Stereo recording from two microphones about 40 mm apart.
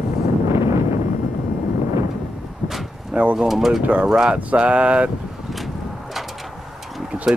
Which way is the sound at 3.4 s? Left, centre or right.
Centre.